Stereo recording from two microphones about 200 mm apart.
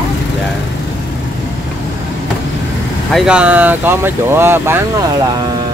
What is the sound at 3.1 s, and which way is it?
Speech, centre (ahead or behind).